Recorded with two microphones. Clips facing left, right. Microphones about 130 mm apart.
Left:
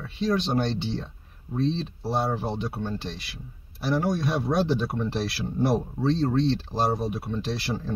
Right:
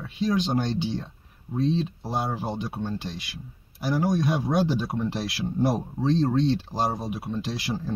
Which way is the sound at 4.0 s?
15° right (ahead or behind).